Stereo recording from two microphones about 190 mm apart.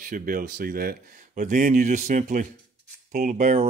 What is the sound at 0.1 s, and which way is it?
Speech, 50° right (ahead or behind).